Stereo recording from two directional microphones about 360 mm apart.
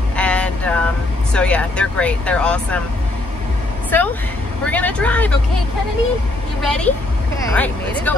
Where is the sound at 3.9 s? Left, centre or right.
Centre.